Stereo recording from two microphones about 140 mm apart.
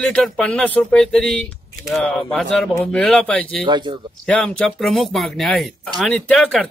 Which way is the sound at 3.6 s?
35° right (ahead or behind).